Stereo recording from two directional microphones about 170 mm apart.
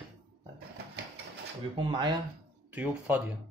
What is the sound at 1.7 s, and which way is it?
Speech, 25° right (ahead or behind).